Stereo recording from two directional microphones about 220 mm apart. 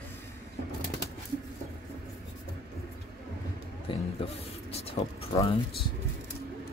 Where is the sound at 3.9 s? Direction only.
25° left (ahead or behind).